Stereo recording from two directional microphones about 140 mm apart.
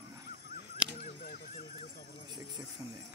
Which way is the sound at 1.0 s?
60° left (ahead or behind).